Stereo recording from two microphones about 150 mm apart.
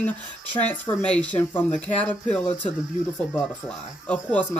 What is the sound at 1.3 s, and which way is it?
A woman's voice, 10° left (ahead or behind).